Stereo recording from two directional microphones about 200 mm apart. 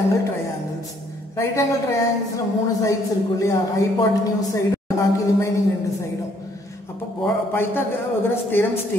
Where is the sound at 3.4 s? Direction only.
15° left (ahead or behind).